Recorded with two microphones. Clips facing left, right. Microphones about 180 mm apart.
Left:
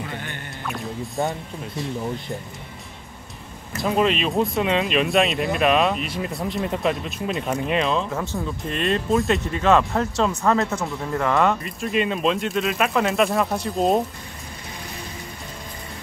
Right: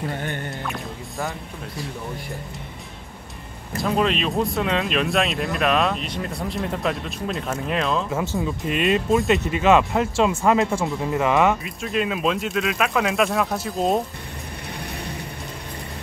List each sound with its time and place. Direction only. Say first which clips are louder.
0.1 s music: right 5 dB; 45° right (ahead or behind)
0.7 s music: left 2 dB; centre (ahead or behind)
3.7 s speech: left 1 dB; centre (ahead or behind)